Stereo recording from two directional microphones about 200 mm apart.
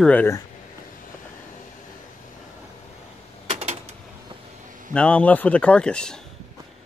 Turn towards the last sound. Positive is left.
turn(degrees=5)  # may be behind; listen again after turning